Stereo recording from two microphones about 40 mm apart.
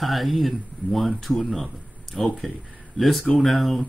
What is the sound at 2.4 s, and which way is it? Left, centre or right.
Speech, centre.